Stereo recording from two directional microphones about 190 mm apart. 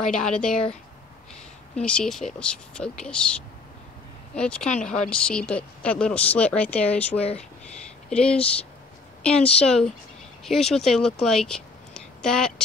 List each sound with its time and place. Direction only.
0.0 s speech: 5° left (ahead or behind)
1.8 s speech: 5° left (ahead or behind)
4.4 s a woman's voice: 5° left (ahead or behind)